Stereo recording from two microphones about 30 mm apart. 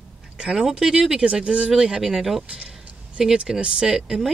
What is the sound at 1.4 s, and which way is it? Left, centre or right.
Speech, right.